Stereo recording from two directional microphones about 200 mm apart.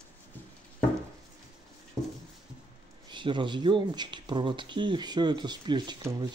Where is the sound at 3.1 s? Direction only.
25° right (ahead or behind).